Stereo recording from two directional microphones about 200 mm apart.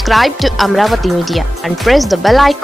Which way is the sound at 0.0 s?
Centre (ahead or behind).